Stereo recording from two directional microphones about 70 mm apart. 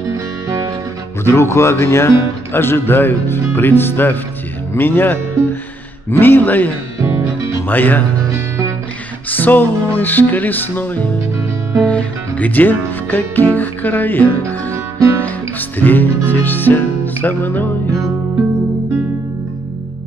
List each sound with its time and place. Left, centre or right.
1.2 s speech: left
6.1 s music: left
7.0 s music: right
7.6 s music: left
9.3 s music: left
11.8 s speech: centre
15.8 s music: left